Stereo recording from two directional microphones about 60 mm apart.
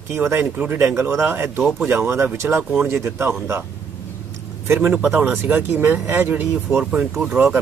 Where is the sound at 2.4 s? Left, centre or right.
Right.